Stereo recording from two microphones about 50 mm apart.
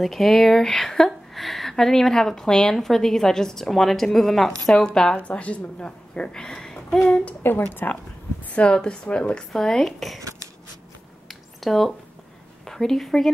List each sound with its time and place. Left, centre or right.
0.0 s speech: centre
5.1 s a woman's voice: left
7.7 s speech: left
8.7 s speech: centre
9.5 s speech: centre
11.2 s a sound: centre
12.6 s a woman's voice: centre